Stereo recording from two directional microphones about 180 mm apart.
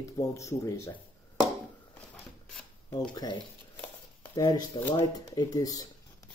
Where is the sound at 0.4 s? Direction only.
15° left (ahead or behind).